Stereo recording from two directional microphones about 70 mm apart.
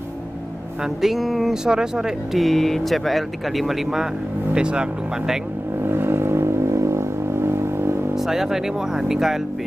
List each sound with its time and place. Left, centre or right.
0.8 s speech: centre
5.9 s vehicle: right
8.2 s speech: centre